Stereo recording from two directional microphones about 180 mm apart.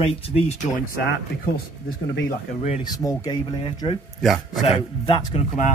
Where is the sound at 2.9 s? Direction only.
20° left (ahead or behind).